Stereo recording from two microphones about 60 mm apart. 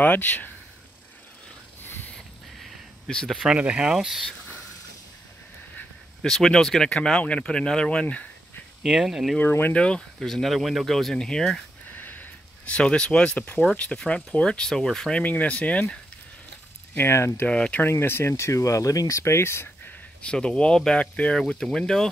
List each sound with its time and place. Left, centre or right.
0.0 s speech: left
3.3 s speech: centre
6.2 s speech: centre
8.8 s speech: centre
9.5 s speech: left
9.8 s speech: centre
11.9 s sniff: left
12.7 s speech: centre
15.2 s speech: left
16.9 s speech: left
17.5 s speech: left
17.8 s speech: left
20.2 s speech: centre